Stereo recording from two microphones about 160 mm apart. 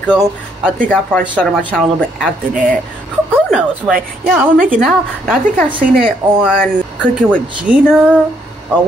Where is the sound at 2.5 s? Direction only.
55° right (ahead or behind).